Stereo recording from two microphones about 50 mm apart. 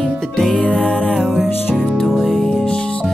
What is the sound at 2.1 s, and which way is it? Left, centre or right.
Music, centre.